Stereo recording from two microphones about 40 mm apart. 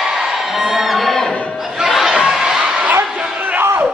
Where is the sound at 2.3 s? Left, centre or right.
Centre.